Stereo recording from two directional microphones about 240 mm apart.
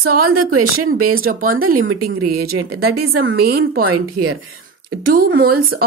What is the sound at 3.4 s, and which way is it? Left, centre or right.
A woman's voice, right.